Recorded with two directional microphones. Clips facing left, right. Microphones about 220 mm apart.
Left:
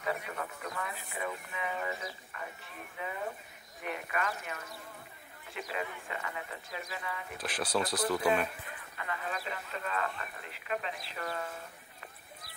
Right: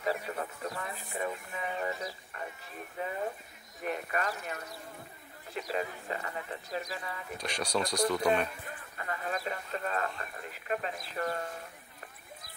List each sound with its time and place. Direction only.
0.0 s music: 35° right (ahead or behind)
3.8 s a sound: 40° right (ahead or behind)
5.5 s speech: 40° right (ahead or behind)
7.3 s speech: 5° left (ahead or behind)
8.6 s speech: 40° right (ahead or behind)